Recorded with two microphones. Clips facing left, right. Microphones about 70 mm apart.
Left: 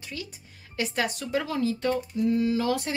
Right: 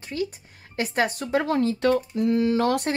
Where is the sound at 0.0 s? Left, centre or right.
Right.